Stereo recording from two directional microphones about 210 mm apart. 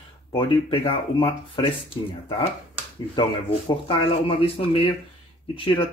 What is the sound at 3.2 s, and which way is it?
Speech, 25° left (ahead or behind).